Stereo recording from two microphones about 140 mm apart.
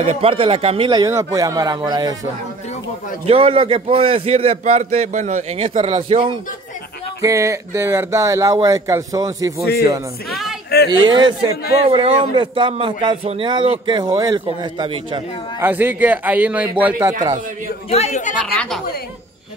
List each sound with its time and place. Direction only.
0.0 s a man's voice: 45° right (ahead or behind)
0.8 s speech: 25° right (ahead or behind)
3.3 s a man's voice: 40° right (ahead or behind)
7.2 s speech: 20° right (ahead or behind)
10.9 s a man's voice: 35° right (ahead or behind)
15.6 s a man's voice: 15° right (ahead or behind)
17.8 s a woman's voice: 50° left (ahead or behind)
18.5 s speech: 10° left (ahead or behind)